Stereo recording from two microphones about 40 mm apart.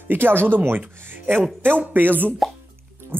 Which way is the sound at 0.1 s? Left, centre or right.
Right.